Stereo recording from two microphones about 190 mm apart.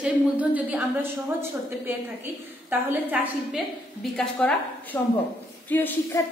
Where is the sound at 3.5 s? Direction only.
5° left (ahead or behind).